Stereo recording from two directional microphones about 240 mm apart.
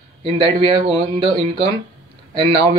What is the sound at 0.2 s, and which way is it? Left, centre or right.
Speech, centre.